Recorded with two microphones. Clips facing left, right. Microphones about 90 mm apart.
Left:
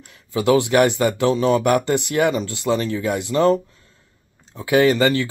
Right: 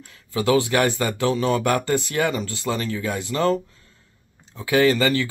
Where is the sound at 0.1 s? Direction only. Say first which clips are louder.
Left 3 dB; 20° left (ahead or behind).